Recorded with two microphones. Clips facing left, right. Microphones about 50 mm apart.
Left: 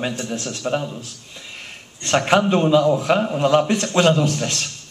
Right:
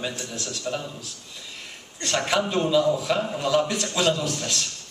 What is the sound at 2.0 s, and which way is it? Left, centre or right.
Speech, left.